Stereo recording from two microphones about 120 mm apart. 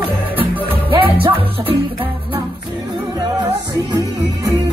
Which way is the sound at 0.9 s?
45° right (ahead or behind).